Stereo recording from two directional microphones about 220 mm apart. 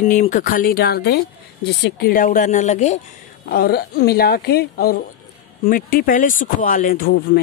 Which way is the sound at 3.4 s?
45° left (ahead or behind).